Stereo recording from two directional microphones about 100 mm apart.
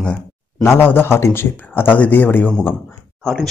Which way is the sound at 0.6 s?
25° left (ahead or behind).